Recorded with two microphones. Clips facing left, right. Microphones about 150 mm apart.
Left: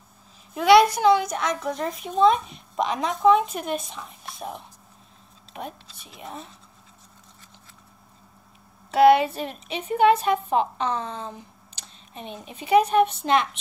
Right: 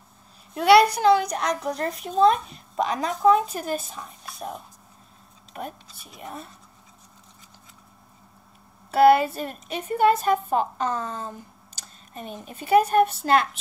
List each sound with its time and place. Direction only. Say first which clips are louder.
0.6 s a woman's voice: even; centre (ahead or behind)
9.4 s a woman's voice: even; 45° right (ahead or behind)
13.0 s a woman's voice: right 1 dB; 5° right (ahead or behind)